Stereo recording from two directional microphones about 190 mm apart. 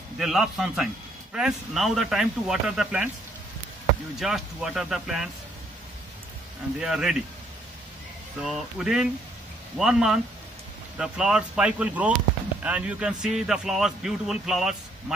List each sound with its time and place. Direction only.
0.2 s a man's voice: centre (ahead or behind)
4.2 s a man's voice: centre (ahead or behind)
6.8 s a man's voice: 5° right (ahead or behind)
8.4 s a man's voice: centre (ahead or behind)